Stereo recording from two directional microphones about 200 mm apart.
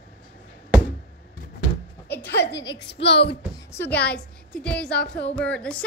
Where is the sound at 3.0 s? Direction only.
30° left (ahead or behind).